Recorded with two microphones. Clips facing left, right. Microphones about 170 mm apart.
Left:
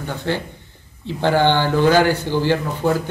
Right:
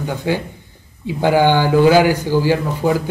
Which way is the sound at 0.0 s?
10° right (ahead or behind).